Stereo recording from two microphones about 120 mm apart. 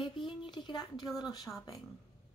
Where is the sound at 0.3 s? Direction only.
40° left (ahead or behind).